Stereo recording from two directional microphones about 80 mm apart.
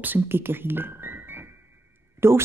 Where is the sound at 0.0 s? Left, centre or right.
Right.